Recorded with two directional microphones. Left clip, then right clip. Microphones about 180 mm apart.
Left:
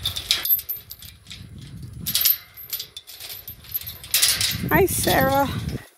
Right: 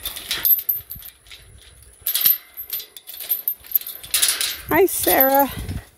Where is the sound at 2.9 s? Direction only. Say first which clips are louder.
Right 1 dB; 15° right (ahead or behind).